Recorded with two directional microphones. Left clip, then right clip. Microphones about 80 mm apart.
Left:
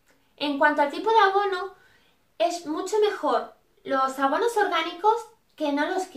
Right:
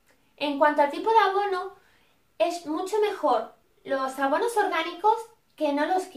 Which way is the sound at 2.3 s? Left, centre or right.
Left.